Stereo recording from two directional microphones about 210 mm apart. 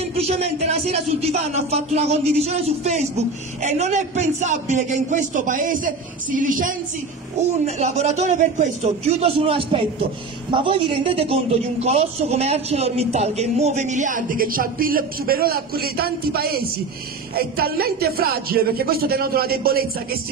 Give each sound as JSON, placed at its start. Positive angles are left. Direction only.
{"t": 0.0, "sound": "a man's voice", "side_deg": -30}